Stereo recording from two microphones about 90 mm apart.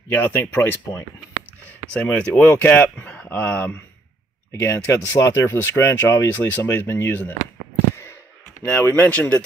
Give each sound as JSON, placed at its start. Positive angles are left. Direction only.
{"t": 0.1, "sound": "speech", "side_deg": 20}
{"t": 4.5, "sound": "speech", "side_deg": 30}
{"t": 8.8, "sound": "speech", "side_deg": 15}